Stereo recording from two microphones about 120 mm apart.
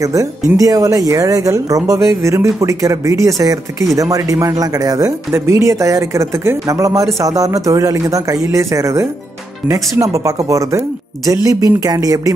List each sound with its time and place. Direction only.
0.0 s speech: 25° right (ahead or behind)